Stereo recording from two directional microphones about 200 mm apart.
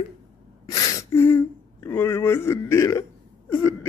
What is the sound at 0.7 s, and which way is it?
Speech, 15° left (ahead or behind).